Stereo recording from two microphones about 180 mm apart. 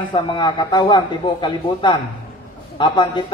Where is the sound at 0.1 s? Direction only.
25° left (ahead or behind).